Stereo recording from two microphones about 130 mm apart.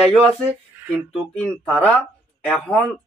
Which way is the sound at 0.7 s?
15° right (ahead or behind).